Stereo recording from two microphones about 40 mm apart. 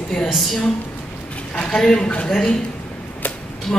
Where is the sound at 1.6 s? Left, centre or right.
Centre.